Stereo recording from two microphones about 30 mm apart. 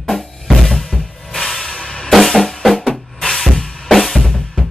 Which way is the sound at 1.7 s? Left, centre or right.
Left.